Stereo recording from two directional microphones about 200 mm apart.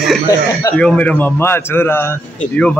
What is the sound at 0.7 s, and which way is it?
A man's voice, 5° left (ahead or behind).